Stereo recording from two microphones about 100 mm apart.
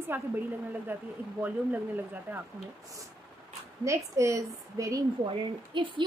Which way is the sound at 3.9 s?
30° right (ahead or behind).